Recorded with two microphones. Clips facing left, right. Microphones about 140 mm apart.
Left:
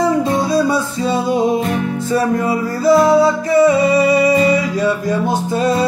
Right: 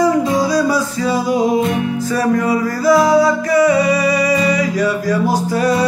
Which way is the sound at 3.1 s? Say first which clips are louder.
Even; 25° left (ahead or behind).